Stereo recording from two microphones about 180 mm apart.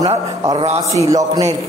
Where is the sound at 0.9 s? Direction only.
20° right (ahead or behind).